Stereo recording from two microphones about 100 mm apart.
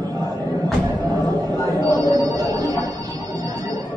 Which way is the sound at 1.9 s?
40° right (ahead or behind).